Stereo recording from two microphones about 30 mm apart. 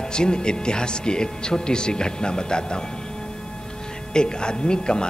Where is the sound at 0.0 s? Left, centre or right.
Left.